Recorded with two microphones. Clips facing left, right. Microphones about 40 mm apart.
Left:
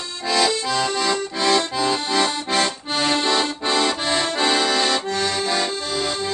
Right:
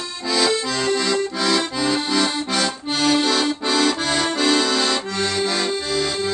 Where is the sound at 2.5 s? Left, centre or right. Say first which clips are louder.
Left 1 dB; centre.